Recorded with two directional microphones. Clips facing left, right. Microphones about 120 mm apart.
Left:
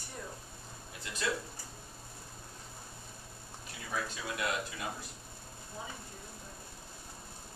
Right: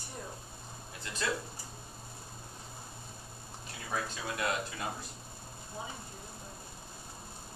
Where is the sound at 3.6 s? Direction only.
25° right (ahead or behind).